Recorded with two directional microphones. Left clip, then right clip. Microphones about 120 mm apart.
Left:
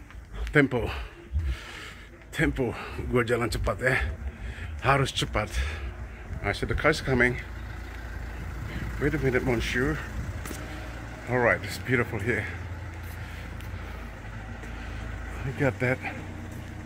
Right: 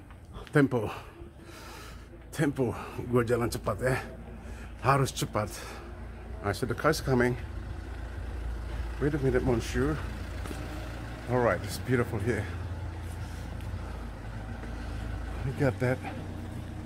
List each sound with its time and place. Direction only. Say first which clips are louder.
0.5 s speech: left 3 dB; 5° left (ahead or behind)
2.3 s speech: left 2 dB; 5° left (ahead or behind)
9.0 s speech: left 2 dB; 20° left (ahead or behind)
11.2 s speech: left 3 dB; 20° left (ahead or behind)
15.4 s speech: left 2 dB; 15° left (ahead or behind)